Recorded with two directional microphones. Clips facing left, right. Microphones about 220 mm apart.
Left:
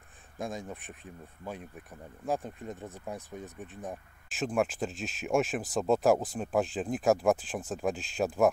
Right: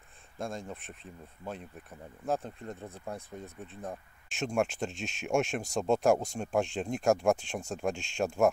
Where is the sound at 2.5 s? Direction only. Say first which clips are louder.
Left 1 dB; centre (ahead or behind).